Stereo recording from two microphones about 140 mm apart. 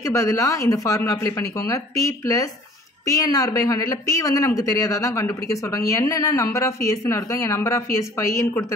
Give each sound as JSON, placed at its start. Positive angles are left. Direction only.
{"t": 0.0, "sound": "speech", "side_deg": 20}